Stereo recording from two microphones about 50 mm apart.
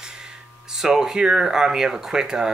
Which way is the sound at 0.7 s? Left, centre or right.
Centre.